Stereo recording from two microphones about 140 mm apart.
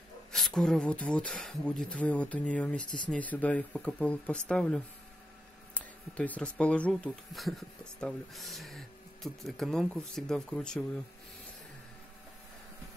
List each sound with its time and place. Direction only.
0.3 s speech: 5° left (ahead or behind)